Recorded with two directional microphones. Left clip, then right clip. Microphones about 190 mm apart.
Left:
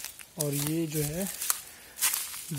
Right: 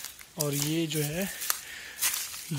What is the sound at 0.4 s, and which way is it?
Speech, centre (ahead or behind).